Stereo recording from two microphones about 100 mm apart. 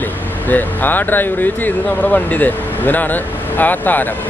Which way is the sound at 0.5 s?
20° left (ahead or behind).